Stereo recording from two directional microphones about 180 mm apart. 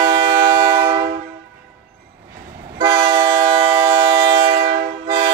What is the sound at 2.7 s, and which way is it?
Train, 25° right (ahead or behind).